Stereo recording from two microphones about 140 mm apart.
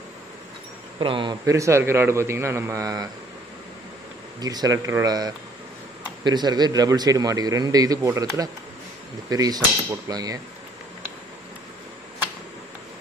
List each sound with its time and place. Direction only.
0.9 s speech: 35° right (ahead or behind)
1.4 s a man's voice: 20° right (ahead or behind)
4.4 s a man's voice: 30° right (ahead or behind)